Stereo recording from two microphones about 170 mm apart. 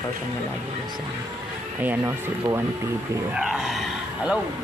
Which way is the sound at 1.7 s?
15° right (ahead or behind).